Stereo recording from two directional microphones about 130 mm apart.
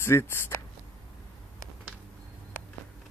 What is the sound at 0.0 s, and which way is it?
Speech, 20° left (ahead or behind).